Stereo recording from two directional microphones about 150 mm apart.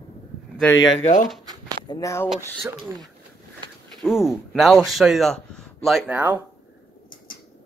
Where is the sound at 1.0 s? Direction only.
60° left (ahead or behind).